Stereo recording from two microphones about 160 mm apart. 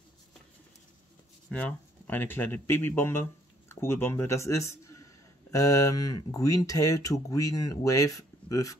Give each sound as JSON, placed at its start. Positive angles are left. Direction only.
{"t": 1.5, "sound": "speech", "side_deg": 10}